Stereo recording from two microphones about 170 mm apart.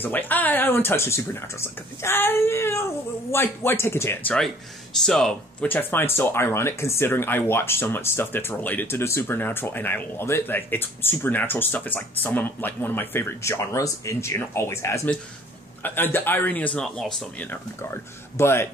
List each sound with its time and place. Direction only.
0.0 s speech: 10° left (ahead or behind)
18.4 s speech: 15° left (ahead or behind)